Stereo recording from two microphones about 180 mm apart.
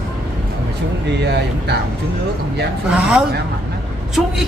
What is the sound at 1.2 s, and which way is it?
Speech, 70° right (ahead or behind).